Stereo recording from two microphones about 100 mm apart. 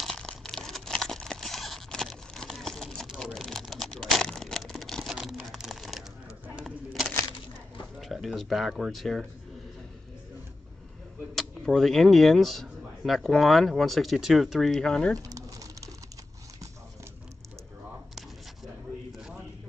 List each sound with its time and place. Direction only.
0.0 s a sound: 5° left (ahead or behind)
8.0 s speech: centre (ahead or behind)
11.3 s speech: 5° left (ahead or behind)
15.1 s pigeon: 35° right (ahead or behind)